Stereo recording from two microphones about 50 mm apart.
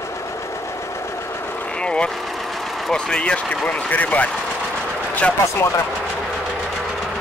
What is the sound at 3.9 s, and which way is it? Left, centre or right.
Speech, left.